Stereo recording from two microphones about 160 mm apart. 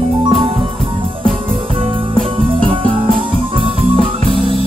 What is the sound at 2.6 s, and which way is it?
Music, 30° right (ahead or behind).